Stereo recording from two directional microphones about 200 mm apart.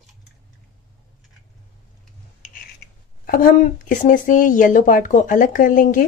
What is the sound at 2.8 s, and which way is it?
Writing, 55° left (ahead or behind).